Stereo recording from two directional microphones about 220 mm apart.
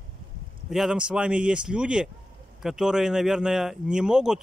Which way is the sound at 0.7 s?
Centre (ahead or behind).